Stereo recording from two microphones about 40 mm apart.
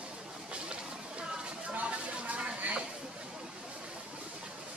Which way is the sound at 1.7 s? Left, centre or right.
Right.